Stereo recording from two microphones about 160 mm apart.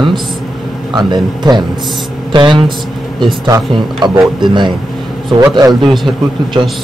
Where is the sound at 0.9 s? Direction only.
25° right (ahead or behind).